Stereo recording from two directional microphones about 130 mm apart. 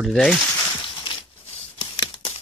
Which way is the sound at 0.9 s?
40° left (ahead or behind).